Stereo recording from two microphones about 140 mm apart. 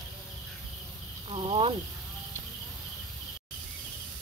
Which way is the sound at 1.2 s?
40° right (ahead or behind).